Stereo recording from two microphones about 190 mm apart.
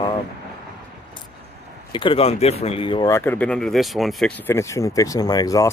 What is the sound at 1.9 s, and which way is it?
Speech, 30° left (ahead or behind).